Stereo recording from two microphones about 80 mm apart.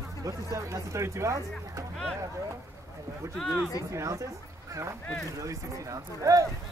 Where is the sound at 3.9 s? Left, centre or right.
Right.